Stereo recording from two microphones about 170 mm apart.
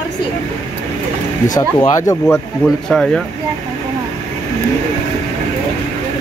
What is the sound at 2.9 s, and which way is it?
Speech, 5° left (ahead or behind).